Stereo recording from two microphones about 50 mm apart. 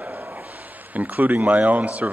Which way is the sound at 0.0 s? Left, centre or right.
Right.